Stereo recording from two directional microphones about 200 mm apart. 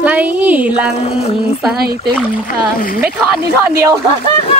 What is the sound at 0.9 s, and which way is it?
Speech, 30° left (ahead or behind).